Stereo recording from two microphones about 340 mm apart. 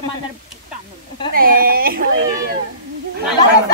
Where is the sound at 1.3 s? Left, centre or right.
Right.